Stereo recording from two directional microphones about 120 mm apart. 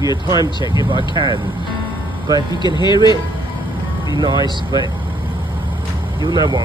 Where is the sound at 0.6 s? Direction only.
40° left (ahead or behind).